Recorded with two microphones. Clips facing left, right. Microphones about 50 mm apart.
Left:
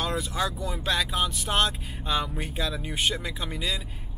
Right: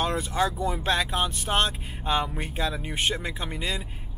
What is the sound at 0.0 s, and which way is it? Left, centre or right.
Speech, right.